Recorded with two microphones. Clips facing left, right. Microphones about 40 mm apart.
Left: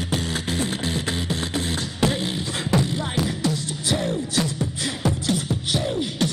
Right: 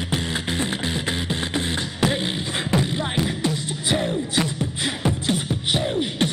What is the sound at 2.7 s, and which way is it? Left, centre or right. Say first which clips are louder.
Beatboxing: even; right.